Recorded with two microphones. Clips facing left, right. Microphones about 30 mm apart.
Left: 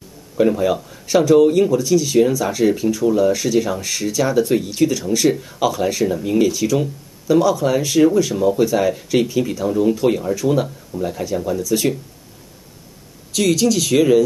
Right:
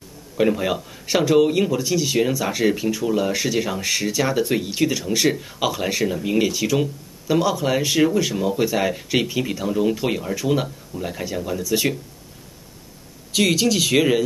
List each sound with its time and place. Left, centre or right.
0.4 s speech: centre
13.3 s speech: centre